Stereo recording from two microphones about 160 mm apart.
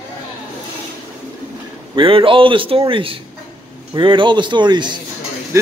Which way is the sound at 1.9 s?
35° right (ahead or behind).